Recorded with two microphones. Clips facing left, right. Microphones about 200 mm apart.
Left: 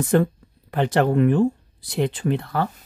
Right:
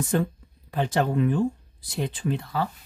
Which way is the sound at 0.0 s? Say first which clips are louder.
Left 6 dB; 65° left (ahead or behind).